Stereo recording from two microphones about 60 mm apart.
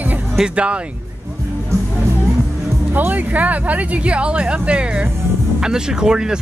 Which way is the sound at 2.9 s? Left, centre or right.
Right.